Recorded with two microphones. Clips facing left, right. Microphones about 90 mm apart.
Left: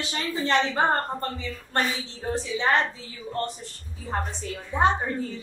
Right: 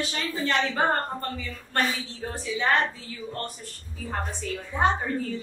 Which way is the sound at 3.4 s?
25° left (ahead or behind).